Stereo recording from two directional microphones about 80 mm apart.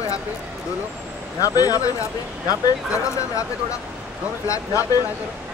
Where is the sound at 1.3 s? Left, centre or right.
Left.